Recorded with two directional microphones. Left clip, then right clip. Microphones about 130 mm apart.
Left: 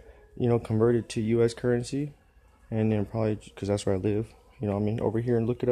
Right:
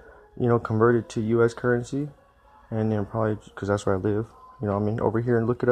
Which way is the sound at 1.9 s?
50° right (ahead or behind).